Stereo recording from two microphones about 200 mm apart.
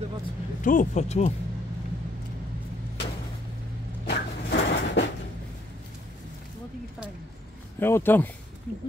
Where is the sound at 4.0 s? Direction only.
55° left (ahead or behind).